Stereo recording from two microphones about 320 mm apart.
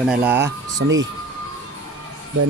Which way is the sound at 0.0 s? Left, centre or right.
Centre.